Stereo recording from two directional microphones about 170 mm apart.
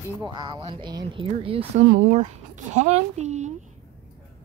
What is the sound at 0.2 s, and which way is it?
Speech, 25° right (ahead or behind).